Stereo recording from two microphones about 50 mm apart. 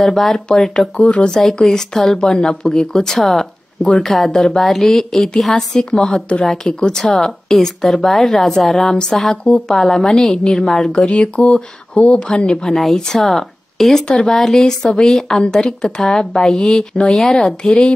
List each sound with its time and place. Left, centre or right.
0.0 s speech: centre
9.4 s speech: centre
9.8 s speech: centre
11.0 s speech: left